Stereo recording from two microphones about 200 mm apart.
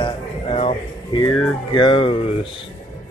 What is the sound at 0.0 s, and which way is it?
Music, 30° left (ahead or behind).